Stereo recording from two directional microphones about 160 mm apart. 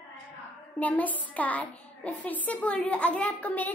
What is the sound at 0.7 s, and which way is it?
A child's voice, 10° left (ahead or behind).